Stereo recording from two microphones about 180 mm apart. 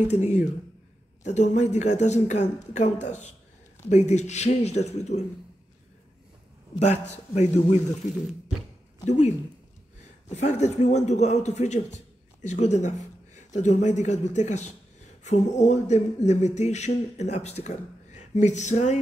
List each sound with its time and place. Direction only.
0.1 s speech: 40° left (ahead or behind)
6.8 s speech: 40° left (ahead or behind)
9.0 s speech: 40° left (ahead or behind)